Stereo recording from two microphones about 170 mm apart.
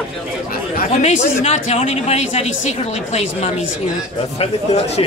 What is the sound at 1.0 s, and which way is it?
Speech, 45° left (ahead or behind).